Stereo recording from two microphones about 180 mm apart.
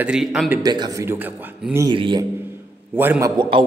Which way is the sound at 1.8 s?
25° right (ahead or behind).